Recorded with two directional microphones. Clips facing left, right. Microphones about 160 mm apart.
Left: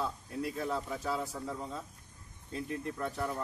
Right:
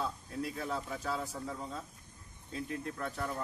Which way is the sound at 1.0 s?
5° left (ahead or behind).